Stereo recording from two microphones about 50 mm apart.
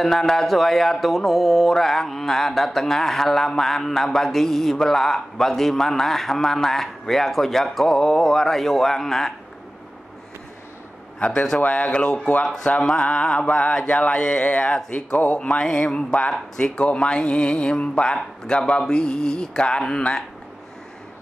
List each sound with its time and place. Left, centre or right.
0.0 s speech: centre
11.1 s a man's voice: left